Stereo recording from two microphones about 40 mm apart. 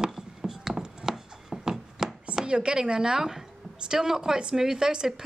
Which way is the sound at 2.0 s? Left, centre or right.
Centre.